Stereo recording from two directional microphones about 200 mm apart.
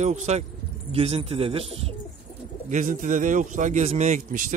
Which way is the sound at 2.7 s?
40° right (ahead or behind).